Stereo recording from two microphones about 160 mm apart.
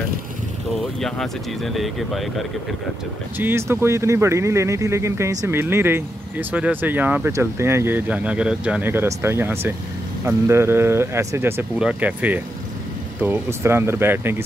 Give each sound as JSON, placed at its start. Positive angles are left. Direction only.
{"t": 1.0, "sound": "speech", "side_deg": 0}
{"t": 3.3, "sound": "speech", "side_deg": -15}